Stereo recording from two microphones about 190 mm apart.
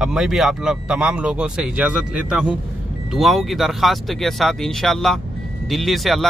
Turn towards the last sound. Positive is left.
turn(degrees=0)  # may be behind; listen again after turning